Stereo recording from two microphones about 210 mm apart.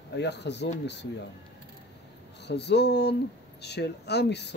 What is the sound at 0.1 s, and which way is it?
Speech, 55° left (ahead or behind).